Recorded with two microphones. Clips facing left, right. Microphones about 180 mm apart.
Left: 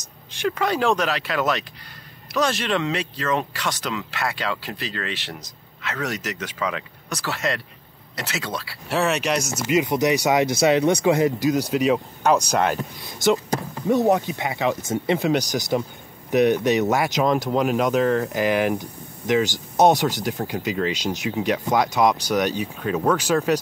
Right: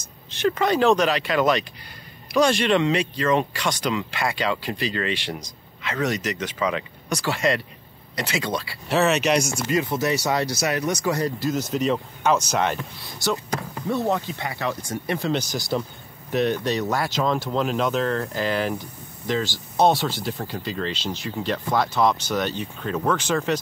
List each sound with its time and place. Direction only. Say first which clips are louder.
0.0 s a sound: right 3 dB; 15° left (ahead or behind)
0.5 s speech: right 2 dB; 5° left (ahead or behind)
9.7 s speech: left 6 dB; 15° left (ahead or behind)
13.8 s speech: left 5 dB; 20° left (ahead or behind)